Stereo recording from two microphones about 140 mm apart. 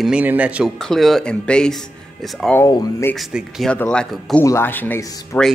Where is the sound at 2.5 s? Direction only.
20° left (ahead or behind).